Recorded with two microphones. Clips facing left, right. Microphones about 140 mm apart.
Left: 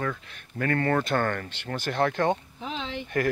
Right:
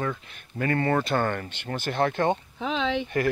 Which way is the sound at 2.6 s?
90° right.